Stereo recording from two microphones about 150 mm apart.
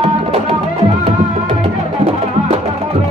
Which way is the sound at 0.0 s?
40° right (ahead or behind).